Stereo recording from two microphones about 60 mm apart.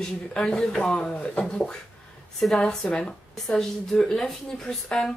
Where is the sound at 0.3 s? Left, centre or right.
Centre.